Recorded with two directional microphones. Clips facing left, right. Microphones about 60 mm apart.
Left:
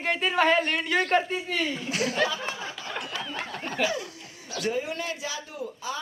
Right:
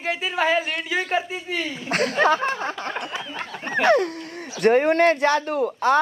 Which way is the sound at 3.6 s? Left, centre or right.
Right.